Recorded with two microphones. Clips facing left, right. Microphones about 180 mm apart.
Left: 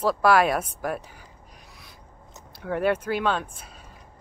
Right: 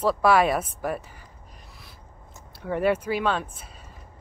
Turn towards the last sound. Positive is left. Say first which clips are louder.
# even
turn(degrees=0)  # may be behind; listen again after turning